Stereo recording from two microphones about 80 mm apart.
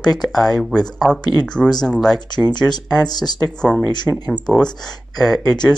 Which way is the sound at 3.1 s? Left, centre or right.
Left.